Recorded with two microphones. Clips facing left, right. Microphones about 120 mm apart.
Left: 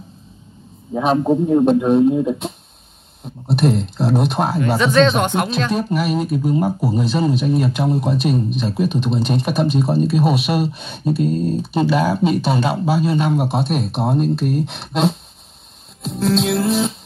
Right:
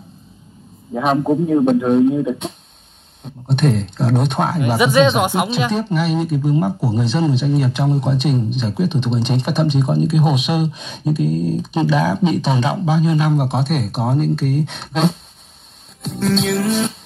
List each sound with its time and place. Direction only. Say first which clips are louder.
0.9 s speech: even; 5° left (ahead or behind)
4.6 s speech: right 1 dB; 15° right (ahead or behind); by 11.1 s centre (ahead or behind)
11.1 s speech: even; 40° left (ahead or behind)
11.6 s speech: even; 5° left (ahead or behind)